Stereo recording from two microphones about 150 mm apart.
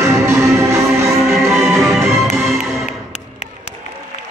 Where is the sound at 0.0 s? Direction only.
20° right (ahead or behind).